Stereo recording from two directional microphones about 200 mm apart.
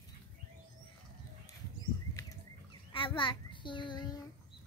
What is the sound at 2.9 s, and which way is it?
Child singing, 25° left (ahead or behind).